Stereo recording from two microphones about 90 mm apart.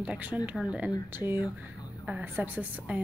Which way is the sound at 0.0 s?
15° right (ahead or behind).